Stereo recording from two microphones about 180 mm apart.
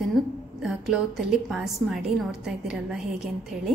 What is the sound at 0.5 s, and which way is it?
A woman's voice, 5° right (ahead or behind).